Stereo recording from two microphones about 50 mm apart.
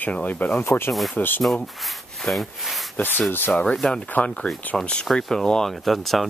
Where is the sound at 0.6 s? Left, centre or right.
Left.